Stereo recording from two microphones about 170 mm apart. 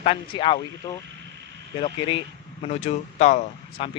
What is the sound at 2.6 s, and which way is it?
Speech, 40° left (ahead or behind).